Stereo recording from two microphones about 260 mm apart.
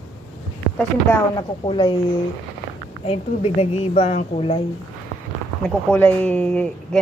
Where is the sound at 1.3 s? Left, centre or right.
Centre.